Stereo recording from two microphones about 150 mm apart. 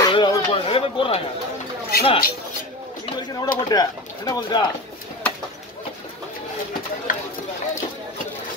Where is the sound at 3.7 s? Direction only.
25° left (ahead or behind).